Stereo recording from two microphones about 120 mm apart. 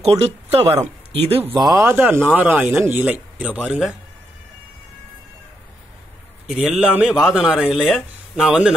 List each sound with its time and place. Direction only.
0.0 s speech: 55° right (ahead or behind)
1.5 s a man's voice: 30° right (ahead or behind); by 3.9 s 10° right (ahead or behind)
6.4 s a man's voice: 5° right (ahead or behind)